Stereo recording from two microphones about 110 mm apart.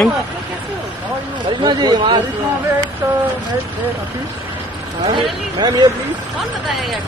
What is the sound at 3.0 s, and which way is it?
Speech, 30° right (ahead or behind).